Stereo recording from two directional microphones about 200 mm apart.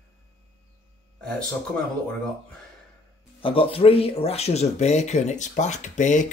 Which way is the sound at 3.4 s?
30° left (ahead or behind).